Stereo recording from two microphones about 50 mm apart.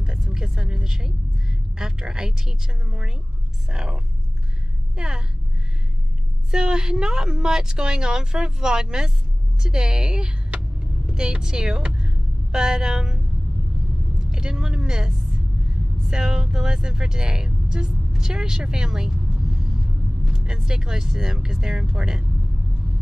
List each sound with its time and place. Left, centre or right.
0.2 s vehicle: centre
1.8 s speech: centre
6.5 s speech: centre
20.3 s speech: centre